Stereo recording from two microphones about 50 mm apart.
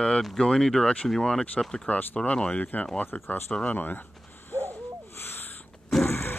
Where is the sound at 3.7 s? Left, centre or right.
Left.